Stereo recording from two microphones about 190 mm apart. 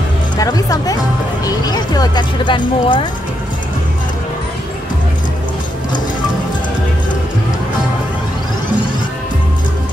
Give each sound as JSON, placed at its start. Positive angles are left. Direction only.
{"t": 0.4, "sound": "speech", "side_deg": 20}